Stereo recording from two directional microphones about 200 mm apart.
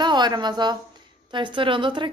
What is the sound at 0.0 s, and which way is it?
Speech, 20° right (ahead or behind).